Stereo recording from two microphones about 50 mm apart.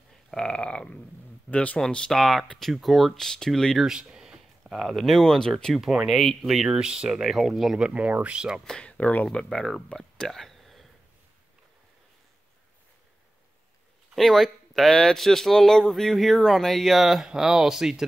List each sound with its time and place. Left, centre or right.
0.3 s a sound: centre
1.5 s speech: left
1.9 s speech: centre
2.1 s speech: centre
3.2 s speech: centre
3.8 s a sound: centre
4.7 s speech: centre
5.2 s speech: centre
6.4 s speech: centre
7.2 s speech: centre
7.8 s speech: right
8.8 s speech: left
9.3 s speech: centre
14.1 s speech: centre